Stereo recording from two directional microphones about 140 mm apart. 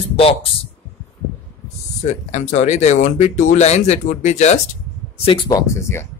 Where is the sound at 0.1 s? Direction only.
40° left (ahead or behind).